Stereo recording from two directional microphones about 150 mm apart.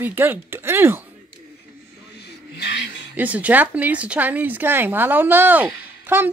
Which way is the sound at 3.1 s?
10° right (ahead or behind).